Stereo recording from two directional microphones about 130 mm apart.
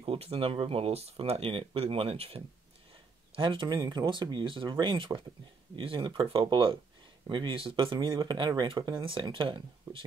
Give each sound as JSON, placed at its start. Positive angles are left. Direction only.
{"t": 0.0, "sound": "speech", "side_deg": -45}
{"t": 3.3, "sound": "speech", "side_deg": -40}